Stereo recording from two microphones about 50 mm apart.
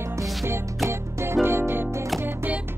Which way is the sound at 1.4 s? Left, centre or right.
Right.